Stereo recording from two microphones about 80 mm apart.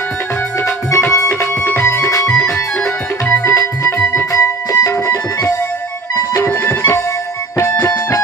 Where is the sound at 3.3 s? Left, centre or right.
Left.